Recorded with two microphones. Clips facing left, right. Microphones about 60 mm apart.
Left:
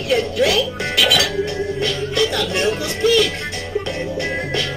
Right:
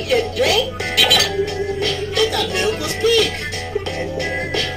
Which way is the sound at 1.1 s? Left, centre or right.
Left.